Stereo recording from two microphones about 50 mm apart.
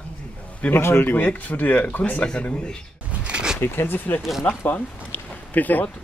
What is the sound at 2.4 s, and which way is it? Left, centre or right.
Speech, left.